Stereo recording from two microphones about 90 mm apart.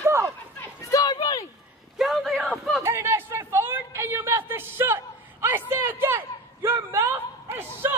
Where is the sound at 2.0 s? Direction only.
Centre (ahead or behind).